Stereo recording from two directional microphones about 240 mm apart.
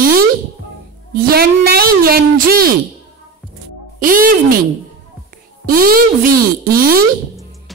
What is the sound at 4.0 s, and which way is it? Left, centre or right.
Speech, right.